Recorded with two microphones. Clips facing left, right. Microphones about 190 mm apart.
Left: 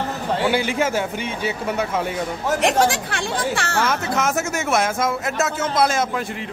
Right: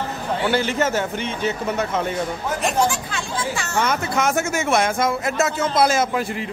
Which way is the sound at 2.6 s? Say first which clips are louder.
Left 2 dB; 80° left.